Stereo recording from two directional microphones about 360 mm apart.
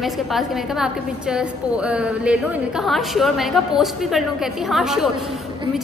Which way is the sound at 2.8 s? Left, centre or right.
Centre.